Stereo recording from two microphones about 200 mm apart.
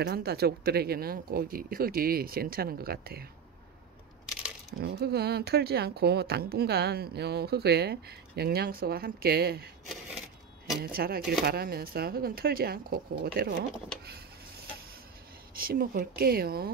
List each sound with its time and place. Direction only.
0.0 s speech: 55° right (ahead or behind)
4.7 s speech: 55° right (ahead or behind)
10.8 s speech: 50° right (ahead or behind)
15.5 s speech: 45° right (ahead or behind)